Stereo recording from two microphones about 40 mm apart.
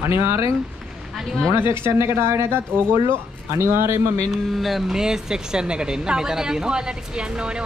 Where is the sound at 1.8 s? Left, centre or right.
Right.